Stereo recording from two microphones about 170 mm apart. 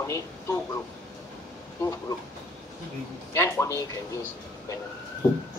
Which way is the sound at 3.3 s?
15° left (ahead or behind).